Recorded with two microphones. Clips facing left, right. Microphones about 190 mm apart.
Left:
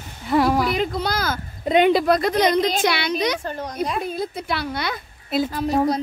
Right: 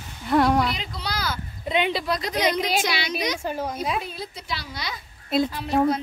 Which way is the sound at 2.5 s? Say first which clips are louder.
Left 4 dB; 10° right (ahead or behind).